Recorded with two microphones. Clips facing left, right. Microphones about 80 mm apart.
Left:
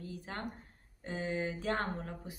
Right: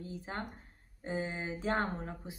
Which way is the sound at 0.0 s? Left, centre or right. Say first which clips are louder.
Right 1 dB; right.